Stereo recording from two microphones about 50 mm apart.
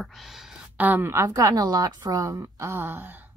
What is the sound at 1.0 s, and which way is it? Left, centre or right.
Speech, right.